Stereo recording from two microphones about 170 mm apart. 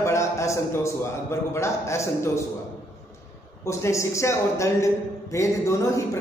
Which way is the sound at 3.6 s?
15° left (ahead or behind).